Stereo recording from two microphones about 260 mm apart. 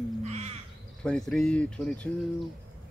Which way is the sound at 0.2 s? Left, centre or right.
Right.